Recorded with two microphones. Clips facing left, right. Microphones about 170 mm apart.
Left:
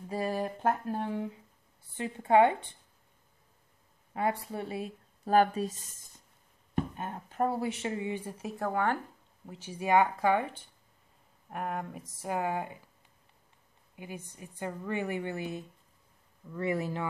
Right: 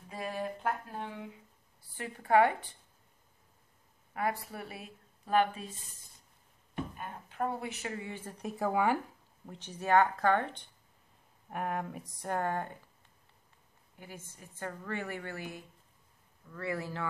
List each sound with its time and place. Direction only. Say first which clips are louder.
0.1 s a sound: left 5 dB; 35° left (ahead or behind)
2.0 s speech: left 3 dB; 25° left (ahead or behind)
4.1 s speech: left 3 dB; 25° left (ahead or behind)
5.2 s a sound: left 4 dB; 40° left (ahead or behind)
7.1 s speech: left 2 dB; 40° left (ahead or behind); by 8.5 s 10° left (ahead or behind)
8.5 s speech: right 1 dB; 5° right (ahead or behind)
9.5 s a woman's voice: left 1 dB; 10° left (ahead or behind)
13.9 s a woman's voice: left 5 dB; 15° left (ahead or behind)